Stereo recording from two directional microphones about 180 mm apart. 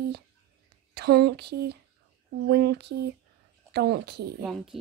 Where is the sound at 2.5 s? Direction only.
65° right (ahead or behind).